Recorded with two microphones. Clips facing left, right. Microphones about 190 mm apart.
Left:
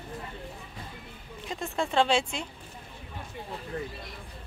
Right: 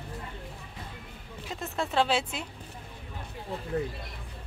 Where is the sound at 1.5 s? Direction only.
Centre (ahead or behind).